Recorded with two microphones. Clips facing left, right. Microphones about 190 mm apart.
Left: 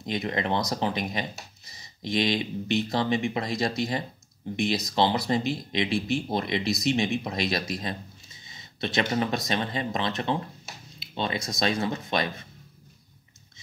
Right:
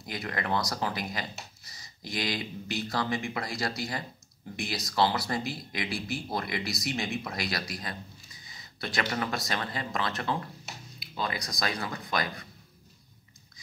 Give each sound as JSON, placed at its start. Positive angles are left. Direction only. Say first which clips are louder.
{"t": 0.0, "sound": "speech", "louder": "left 6 dB", "side_deg": 20}